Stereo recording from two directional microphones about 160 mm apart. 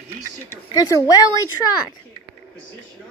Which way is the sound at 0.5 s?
20° left (ahead or behind).